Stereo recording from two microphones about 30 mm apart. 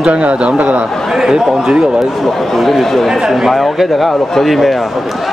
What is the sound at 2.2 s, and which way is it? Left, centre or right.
Speech, centre.